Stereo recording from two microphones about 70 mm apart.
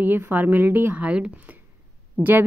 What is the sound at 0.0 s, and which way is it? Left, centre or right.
A woman's voice, right.